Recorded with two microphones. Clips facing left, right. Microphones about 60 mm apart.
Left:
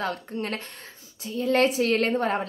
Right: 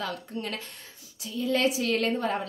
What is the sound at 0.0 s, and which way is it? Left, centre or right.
A woman's voice, left.